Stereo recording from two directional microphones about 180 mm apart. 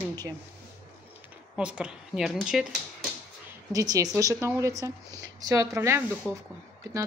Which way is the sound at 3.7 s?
20° right (ahead or behind).